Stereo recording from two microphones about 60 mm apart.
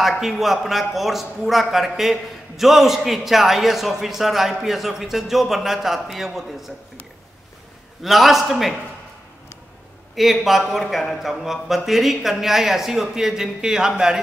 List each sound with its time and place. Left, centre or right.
0.2 s a man's voice: centre
8.0 s a man's voice: centre
10.1 s a man's voice: centre